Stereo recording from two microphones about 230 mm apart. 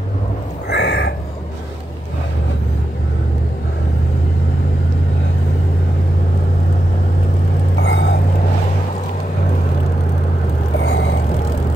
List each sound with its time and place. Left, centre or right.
0.7 s a sound: left
7.8 s vehicle: left
10.8 s vehicle: left